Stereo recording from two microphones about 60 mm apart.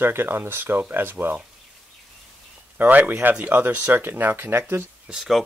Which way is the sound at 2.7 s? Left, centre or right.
Right.